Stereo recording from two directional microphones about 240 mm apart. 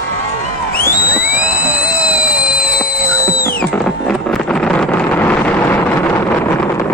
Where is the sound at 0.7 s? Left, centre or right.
Left.